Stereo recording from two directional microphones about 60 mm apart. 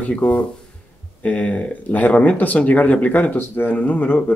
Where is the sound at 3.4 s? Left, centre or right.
Left.